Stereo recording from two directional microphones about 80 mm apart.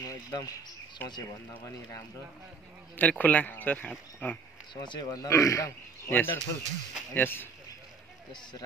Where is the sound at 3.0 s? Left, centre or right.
Centre.